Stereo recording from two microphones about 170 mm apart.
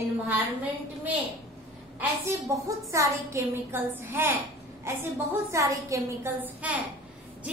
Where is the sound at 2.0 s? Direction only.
15° right (ahead or behind).